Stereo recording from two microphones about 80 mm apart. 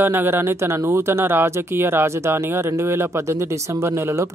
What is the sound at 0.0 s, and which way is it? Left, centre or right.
Speech, right.